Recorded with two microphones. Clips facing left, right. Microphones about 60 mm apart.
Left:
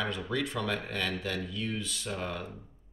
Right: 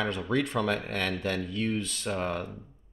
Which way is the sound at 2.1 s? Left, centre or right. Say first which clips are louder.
Right 6 dB; right.